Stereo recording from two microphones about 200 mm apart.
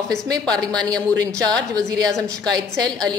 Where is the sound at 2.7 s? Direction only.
5° left (ahead or behind).